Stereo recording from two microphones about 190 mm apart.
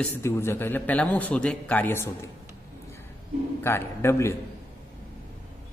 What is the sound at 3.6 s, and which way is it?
Speech, 10° left (ahead or behind).